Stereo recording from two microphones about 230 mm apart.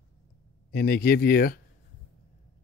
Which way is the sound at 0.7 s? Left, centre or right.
Left.